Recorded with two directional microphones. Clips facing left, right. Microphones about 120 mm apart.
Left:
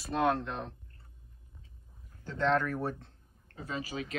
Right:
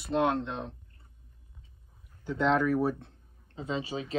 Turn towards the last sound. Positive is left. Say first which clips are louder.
# right 4 dB
turn(degrees=-30)  # may be behind; listen again after turning